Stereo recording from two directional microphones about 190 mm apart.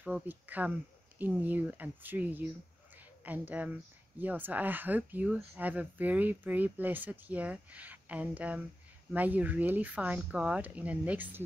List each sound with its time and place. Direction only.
0.0 s speech: 10° right (ahead or behind)